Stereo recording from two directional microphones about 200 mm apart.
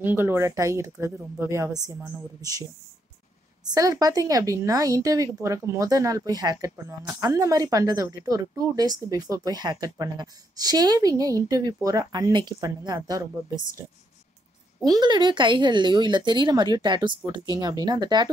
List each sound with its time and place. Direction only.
0.0 s speech: 10° right (ahead or behind)
3.6 s speech: 20° right (ahead or behind)
14.9 s speech: 20° right (ahead or behind)